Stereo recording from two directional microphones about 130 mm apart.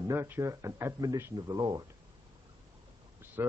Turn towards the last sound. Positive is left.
turn(degrees=-20)  # may be behind; listen again after turning